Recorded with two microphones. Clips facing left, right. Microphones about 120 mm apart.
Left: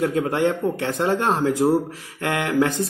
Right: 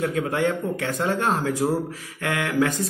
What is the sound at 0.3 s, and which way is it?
Speech, 25° left (ahead or behind).